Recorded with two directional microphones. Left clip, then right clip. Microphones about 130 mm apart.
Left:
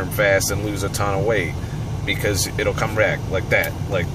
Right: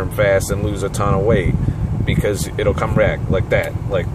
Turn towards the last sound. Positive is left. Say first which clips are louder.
# right 2 dB
turn(degrees=-20)  # may be behind; listen again after turning